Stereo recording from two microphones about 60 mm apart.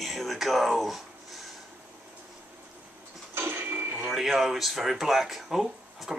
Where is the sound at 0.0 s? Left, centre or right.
Centre.